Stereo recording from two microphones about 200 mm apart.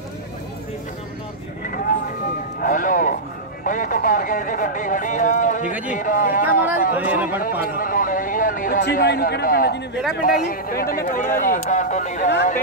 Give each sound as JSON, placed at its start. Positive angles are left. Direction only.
{"t": 2.6, "sound": "speech", "side_deg": 40}
{"t": 7.0, "sound": "speech", "side_deg": -5}
{"t": 7.7, "sound": "a sound", "side_deg": 45}
{"t": 8.9, "sound": "a man's voice", "side_deg": 50}